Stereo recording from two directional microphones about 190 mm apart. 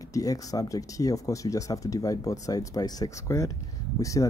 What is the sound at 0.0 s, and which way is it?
Speech, 15° left (ahead or behind).